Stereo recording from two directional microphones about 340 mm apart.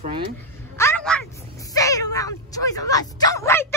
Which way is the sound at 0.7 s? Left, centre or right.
Centre.